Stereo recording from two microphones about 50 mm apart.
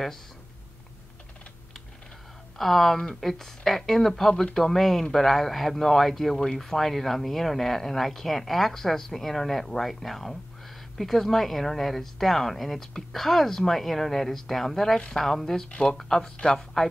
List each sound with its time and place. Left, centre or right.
2.5 s speech: centre
15.0 s speech: centre